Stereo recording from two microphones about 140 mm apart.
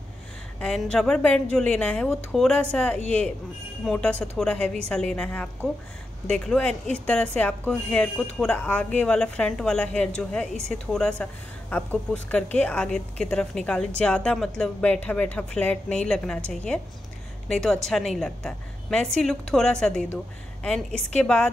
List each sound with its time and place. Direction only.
0.6 s a woman's voice: 5° left (ahead or behind)